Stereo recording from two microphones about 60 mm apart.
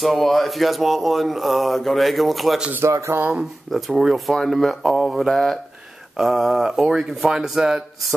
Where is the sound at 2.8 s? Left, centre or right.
Right.